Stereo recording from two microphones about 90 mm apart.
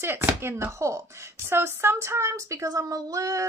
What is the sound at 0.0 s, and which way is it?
Speech, 25° right (ahead or behind).